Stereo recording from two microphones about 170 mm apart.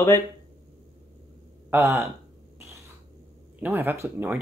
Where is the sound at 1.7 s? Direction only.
15° right (ahead or behind).